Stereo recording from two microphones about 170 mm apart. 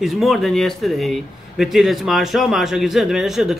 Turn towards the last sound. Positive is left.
turn(degrees=0)  # may be behind; listen again after turning